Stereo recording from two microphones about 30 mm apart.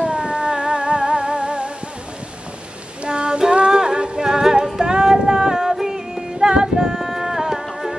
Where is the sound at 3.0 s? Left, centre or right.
Right.